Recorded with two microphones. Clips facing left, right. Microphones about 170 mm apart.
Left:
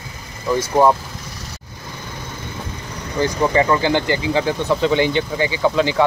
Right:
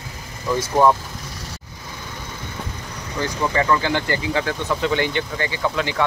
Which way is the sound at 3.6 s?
25° left (ahead or behind).